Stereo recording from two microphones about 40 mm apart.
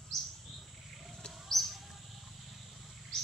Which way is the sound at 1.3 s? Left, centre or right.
Centre.